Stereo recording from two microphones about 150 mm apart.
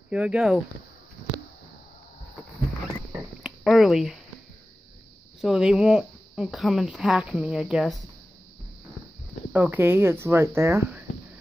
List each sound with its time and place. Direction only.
0.1 s speech: 10° right (ahead or behind)
3.4 s a sound: centre (ahead or behind)
5.4 s speech: 5° right (ahead or behind)
9.5 s speech: 10° right (ahead or behind)